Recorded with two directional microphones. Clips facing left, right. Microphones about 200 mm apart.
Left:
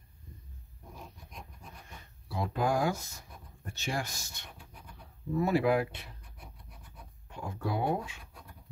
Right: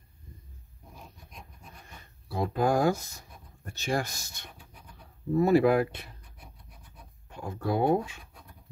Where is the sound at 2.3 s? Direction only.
40° right (ahead or behind).